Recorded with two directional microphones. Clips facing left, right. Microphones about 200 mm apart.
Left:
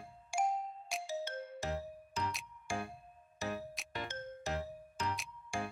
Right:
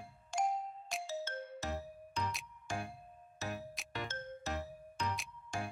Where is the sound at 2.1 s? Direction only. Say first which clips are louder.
Even; 5° left (ahead or behind).